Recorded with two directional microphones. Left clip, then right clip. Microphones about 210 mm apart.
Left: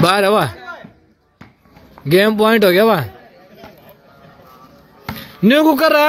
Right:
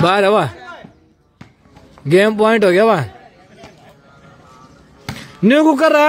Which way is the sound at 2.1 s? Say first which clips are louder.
Even; 10° right (ahead or behind).